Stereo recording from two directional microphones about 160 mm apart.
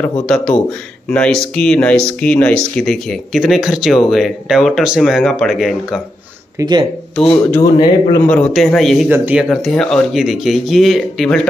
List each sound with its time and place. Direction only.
0.3 s speech: 5° left (ahead or behind)
6.6 s speech: 25° right (ahead or behind)
7.2 s speech: 5° left (ahead or behind)
9.1 s speech: 10° right (ahead or behind)